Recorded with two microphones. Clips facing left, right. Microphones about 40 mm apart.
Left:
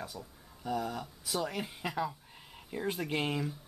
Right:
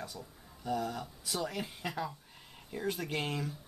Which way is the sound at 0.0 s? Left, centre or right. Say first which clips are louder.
Left 1 dB; centre.